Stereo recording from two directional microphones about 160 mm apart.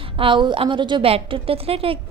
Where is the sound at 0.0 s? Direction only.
35° right (ahead or behind).